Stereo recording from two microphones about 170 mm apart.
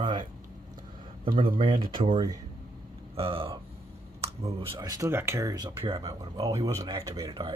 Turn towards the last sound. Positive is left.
turn(degrees=-30)  # may be behind; listen again after turning